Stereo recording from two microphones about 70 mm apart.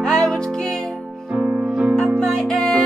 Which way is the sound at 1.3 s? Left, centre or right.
Centre.